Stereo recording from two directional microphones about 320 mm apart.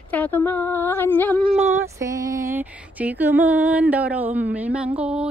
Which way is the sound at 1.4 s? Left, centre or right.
Centre.